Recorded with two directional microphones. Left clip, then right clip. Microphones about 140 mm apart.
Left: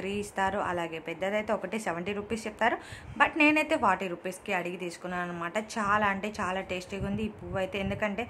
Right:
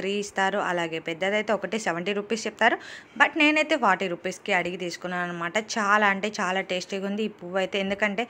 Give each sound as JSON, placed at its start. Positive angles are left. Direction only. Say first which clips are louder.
{"t": 0.0, "sound": "a woman's voice", "louder": "right 5 dB", "side_deg": -20}